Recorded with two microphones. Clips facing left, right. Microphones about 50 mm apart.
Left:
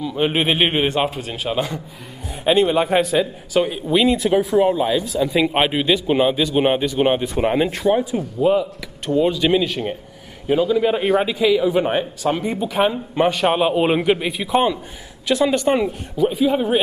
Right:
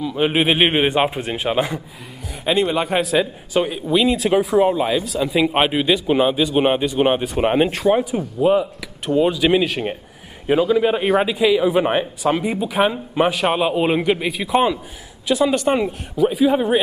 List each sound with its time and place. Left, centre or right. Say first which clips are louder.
0.0 s a man's voice: right 1 dB; centre
0.7 s a man's voice: right 2 dB; centre
2.4 s a man's voice: left 3 dB; centre
4.6 s a man's voice: even; right
4.8 s a man's voice: left 1 dB; centre
7.3 s a man's voice: right 1 dB; right
8.2 s a man's voice: right 1 dB; centre
11.6 s a man's voice: right 1 dB; centre